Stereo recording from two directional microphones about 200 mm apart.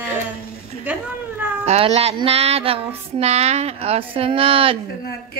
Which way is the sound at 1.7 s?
30° right (ahead or behind).